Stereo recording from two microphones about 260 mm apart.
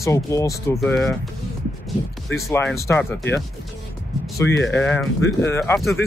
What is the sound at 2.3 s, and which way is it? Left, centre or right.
Speech, centre.